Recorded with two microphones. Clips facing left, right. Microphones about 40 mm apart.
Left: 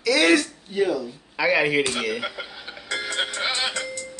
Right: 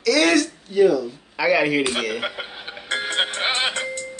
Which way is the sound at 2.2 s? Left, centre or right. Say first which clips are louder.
Right 3 dB; right.